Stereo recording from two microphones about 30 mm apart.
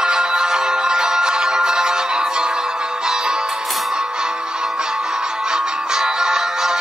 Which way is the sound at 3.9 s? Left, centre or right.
Right.